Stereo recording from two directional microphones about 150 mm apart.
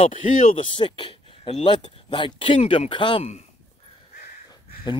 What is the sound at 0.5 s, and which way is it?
Speech, 35° left (ahead or behind).